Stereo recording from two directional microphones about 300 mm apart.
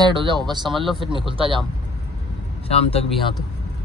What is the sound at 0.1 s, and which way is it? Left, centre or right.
Speech, centre.